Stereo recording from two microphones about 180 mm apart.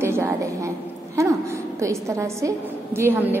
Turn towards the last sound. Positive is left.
turn(degrees=-10)  # may be behind; listen again after turning